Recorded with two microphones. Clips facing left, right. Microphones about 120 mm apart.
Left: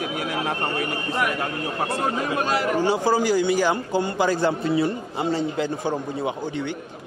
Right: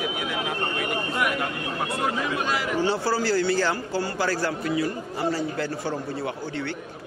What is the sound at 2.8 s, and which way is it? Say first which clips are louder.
A man's voice: left 2 dB; 15° left (ahead or behind).